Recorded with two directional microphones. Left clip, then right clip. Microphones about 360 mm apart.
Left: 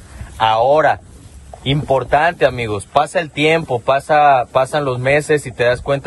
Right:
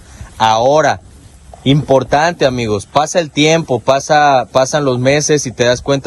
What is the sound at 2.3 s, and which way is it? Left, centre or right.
Speech, centre.